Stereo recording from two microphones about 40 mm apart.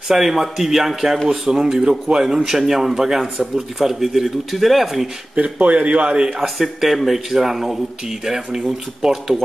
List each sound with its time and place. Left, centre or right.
0.1 s speech: centre
5.3 s speech: right
6.4 s speech: centre